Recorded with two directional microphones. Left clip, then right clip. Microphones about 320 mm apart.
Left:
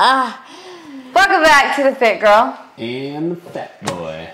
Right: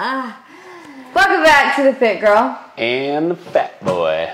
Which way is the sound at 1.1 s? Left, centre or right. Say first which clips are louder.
Left 1 dB; left.